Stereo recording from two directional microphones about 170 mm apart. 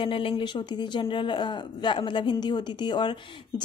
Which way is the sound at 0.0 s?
30° left (ahead or behind).